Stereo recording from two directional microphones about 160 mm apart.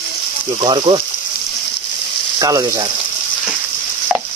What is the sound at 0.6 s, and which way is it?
Speech, 30° right (ahead or behind).